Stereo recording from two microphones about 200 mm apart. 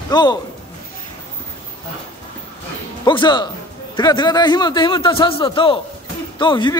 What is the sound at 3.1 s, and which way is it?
A man's voice, 20° left (ahead or behind).